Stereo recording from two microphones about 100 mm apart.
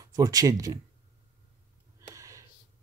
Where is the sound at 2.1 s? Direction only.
30° right (ahead or behind).